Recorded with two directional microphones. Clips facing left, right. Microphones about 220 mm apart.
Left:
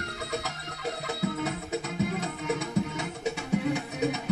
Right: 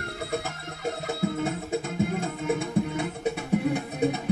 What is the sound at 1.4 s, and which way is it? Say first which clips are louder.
Music: right 3 dB; 50° right (ahead or behind).